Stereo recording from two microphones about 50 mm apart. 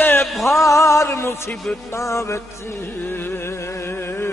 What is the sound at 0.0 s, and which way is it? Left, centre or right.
Music, left.